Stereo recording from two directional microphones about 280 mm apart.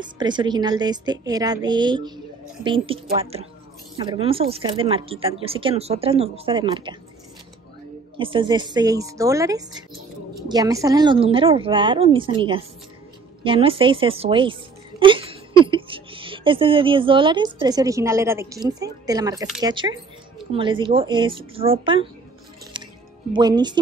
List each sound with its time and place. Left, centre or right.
0.0 s a woman's voice: centre
8.2 s a woman's voice: centre
23.3 s a woman's voice: centre